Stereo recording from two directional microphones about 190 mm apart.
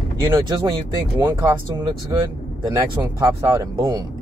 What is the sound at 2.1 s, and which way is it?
Speech, 15° right (ahead or behind).